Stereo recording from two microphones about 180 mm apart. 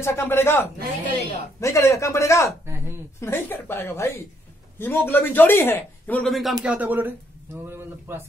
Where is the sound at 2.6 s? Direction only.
15° right (ahead or behind).